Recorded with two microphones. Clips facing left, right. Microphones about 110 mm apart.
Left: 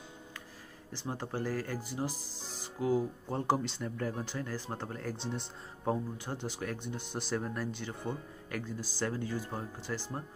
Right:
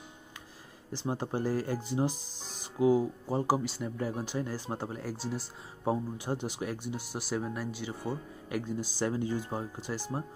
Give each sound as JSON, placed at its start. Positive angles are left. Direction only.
{"t": 0.9, "sound": "speech", "side_deg": -20}